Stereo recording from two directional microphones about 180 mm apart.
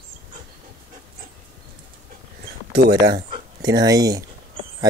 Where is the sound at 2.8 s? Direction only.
65° right (ahead or behind).